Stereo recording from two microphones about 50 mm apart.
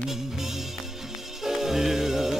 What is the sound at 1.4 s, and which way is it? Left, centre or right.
Music, centre.